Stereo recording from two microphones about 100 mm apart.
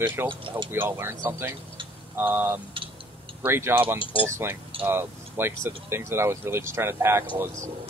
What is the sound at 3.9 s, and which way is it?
Speech, 60° left (ahead or behind).